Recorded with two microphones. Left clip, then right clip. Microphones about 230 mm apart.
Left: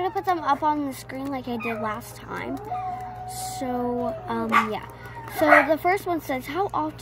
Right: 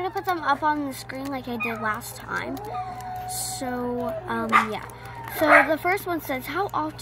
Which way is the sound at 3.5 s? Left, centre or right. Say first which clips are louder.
Left 2 dB; centre.